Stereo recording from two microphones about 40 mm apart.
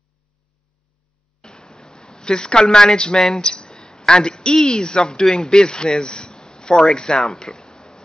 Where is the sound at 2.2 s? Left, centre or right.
Centre.